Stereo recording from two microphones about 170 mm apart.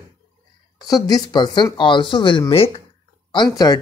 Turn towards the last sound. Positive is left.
turn(degrees=25)  # may be behind; listen again after turning